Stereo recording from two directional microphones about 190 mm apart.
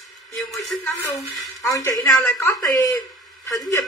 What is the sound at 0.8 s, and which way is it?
A woman's voice, 15° left (ahead or behind).